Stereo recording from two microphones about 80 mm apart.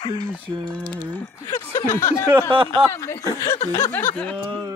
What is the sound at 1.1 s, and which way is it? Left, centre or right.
Speech, left.